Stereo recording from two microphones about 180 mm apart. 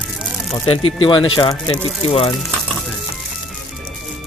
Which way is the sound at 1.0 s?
25° left (ahead or behind).